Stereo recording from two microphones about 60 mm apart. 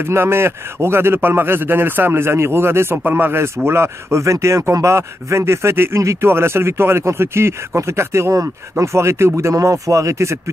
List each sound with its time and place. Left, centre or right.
0.0 s a man's voice: right